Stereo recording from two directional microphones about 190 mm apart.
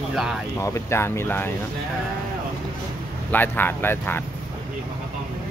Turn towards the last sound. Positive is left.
turn(degrees=10)  # may be behind; listen again after turning